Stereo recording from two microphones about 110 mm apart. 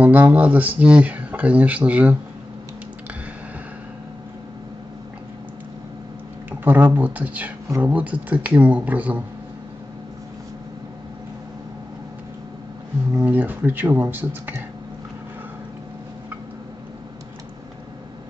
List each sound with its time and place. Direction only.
0.0 s speech: 15° right (ahead or behind)
6.6 s speech: 15° right (ahead or behind)
13.2 s speech: 15° right (ahead or behind)